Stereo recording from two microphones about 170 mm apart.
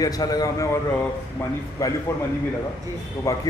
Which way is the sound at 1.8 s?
20° left (ahead or behind).